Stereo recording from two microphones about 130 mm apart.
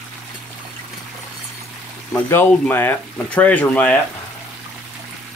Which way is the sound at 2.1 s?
15° left (ahead or behind).